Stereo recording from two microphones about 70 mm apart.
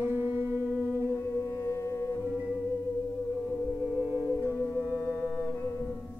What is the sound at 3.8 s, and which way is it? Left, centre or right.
Music, right.